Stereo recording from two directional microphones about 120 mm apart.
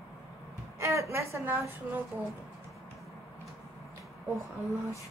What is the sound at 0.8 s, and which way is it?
Speech, 25° right (ahead or behind).